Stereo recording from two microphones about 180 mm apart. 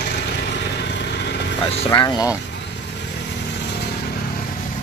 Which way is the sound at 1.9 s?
20° left (ahead or behind).